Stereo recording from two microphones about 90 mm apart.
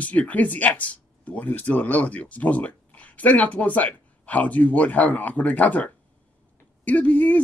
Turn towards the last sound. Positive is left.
turn(degrees=15)  # may be behind; listen again after turning